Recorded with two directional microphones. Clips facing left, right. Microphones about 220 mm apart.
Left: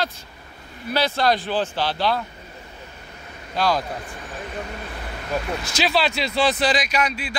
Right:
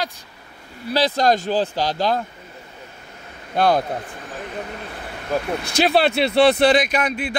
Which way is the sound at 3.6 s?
55° right (ahead or behind).